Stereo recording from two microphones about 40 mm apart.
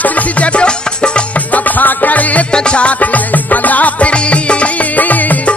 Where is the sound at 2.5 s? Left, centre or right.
Left.